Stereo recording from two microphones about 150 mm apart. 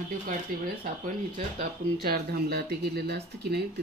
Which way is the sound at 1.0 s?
60° right (ahead or behind).